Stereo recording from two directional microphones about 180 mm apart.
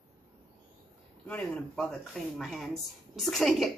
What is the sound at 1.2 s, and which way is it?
A woman's voice, 5° left (ahead or behind).